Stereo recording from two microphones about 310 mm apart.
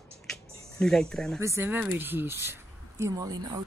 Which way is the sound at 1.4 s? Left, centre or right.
Centre.